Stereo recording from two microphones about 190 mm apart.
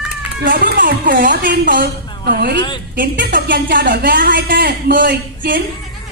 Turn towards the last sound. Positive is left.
turn(degrees=-50)  # may be behind; listen again after turning